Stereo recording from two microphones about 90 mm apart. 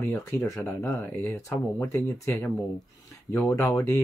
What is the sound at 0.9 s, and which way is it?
Speech, 20° left (ahead or behind).